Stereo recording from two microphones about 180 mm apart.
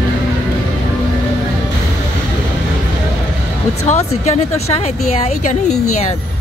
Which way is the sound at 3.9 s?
40° left (ahead or behind).